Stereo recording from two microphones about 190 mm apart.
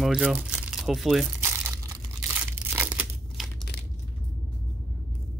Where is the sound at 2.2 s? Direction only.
10° right (ahead or behind).